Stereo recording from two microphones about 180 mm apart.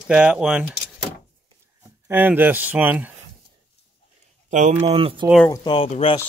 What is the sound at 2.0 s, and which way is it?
Speech, 10° right (ahead or behind).